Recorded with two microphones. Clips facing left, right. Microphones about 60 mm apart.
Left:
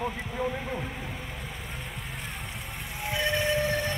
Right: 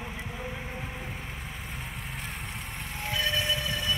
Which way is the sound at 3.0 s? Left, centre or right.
Left.